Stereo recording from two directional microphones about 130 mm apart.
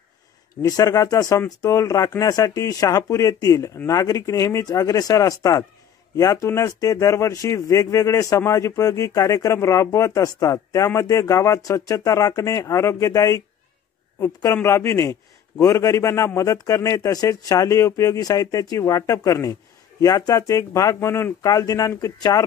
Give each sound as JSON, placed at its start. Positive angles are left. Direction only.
{"t": 0.6, "sound": "speech", "side_deg": 25}